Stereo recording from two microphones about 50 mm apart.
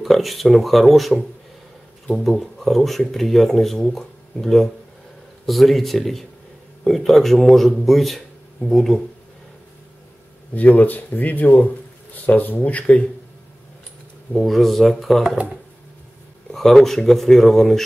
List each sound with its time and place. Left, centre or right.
0.0 s speech: centre
10.5 s speech: left
14.4 s speech: centre
16.5 s speech: centre